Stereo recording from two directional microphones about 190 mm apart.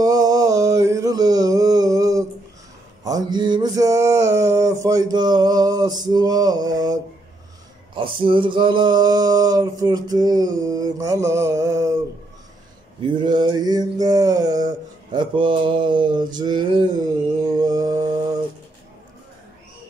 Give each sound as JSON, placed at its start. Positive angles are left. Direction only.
{"t": 0.0, "sound": "a sound", "side_deg": -20}
{"t": 3.0, "sound": "male singing", "side_deg": -20}
{"t": 13.2, "sound": "male singing", "side_deg": -20}
{"t": 17.5, "sound": "mantra", "side_deg": -20}